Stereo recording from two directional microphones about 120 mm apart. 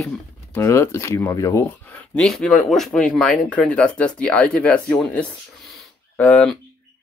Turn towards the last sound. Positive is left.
turn(degrees=10)  # may be behind; listen again after turning